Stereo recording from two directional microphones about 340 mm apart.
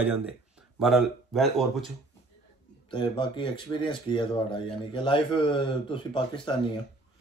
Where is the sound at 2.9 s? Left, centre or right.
Centre.